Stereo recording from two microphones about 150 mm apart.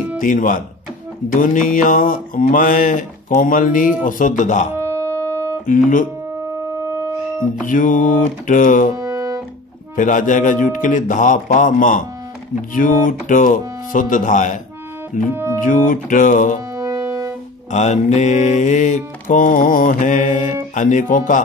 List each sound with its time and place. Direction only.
0.2 s mantra: 60° left (ahead or behind)
4.7 s music: 20° right (ahead or behind)
5.7 s mantra: 60° left (ahead or behind)
7.6 s mantra: 60° left (ahead or behind)
8.9 s music: 20° right (ahead or behind)
9.9 s mantra: 60° left (ahead or behind)
16.7 s music: 20° right (ahead or behind)
17.6 s mantra: 50° left (ahead or behind)